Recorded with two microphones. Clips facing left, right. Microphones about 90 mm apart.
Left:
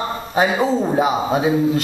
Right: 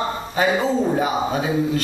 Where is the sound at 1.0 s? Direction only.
20° left (ahead or behind).